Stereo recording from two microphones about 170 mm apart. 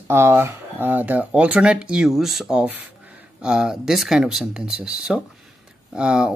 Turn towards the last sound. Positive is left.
turn(degrees=-5)  # may be behind; listen again after turning